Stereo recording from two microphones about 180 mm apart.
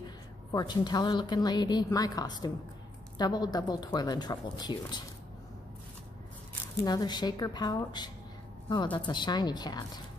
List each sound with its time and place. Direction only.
0.5 s speech: 20° left (ahead or behind)
6.8 s speech: 20° left (ahead or behind)